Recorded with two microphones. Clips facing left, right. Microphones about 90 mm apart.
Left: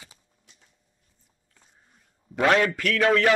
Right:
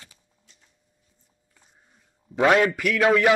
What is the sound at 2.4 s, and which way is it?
Speech, 10° right (ahead or behind).